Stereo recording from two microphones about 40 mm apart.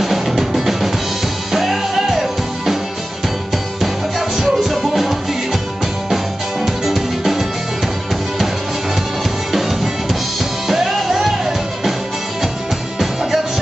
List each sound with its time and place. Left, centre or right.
0.0 s music: centre
4.4 s music: centre
9.5 s drum kit: centre
10.7 s music: centre